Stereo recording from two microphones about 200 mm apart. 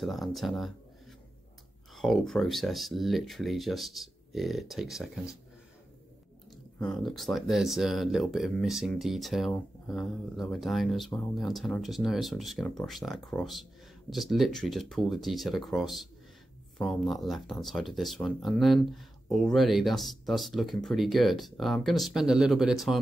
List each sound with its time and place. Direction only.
0.0 s speech: centre (ahead or behind)
2.0 s speech: centre (ahead or behind)
6.8 s speech: 5° left (ahead or behind)